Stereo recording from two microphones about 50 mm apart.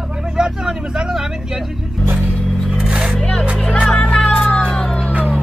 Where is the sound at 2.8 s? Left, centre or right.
Centre.